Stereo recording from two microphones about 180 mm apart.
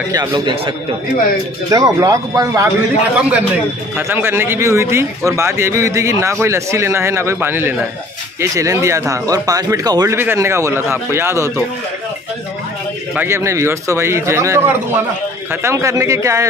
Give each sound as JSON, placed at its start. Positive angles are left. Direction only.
{"t": 0.1, "sound": "a man's voice", "side_deg": -25}
{"t": 3.2, "sound": "speech", "side_deg": -5}
{"t": 13.1, "sound": "speech", "side_deg": -10}